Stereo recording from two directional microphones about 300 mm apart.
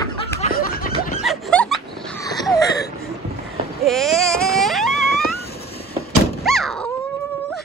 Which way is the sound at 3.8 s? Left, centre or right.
Centre.